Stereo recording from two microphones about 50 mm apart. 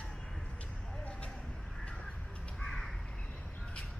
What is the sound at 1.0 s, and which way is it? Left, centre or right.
Vehicle, left.